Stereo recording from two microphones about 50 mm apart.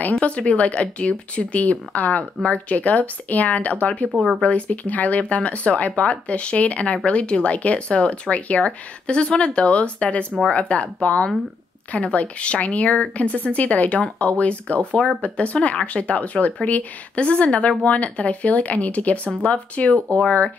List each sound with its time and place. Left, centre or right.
0.2 s speech: left